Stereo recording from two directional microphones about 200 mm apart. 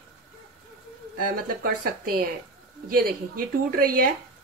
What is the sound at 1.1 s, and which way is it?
A woman's voice, 45° right (ahead or behind).